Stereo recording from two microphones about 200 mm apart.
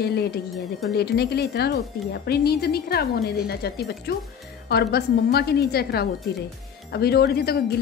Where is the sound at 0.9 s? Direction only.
55° left (ahead or behind).